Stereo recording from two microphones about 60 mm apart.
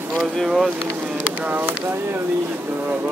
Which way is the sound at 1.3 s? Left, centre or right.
Right.